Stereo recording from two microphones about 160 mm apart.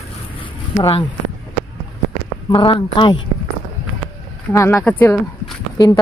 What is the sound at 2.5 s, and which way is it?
Speech, 35° left (ahead or behind).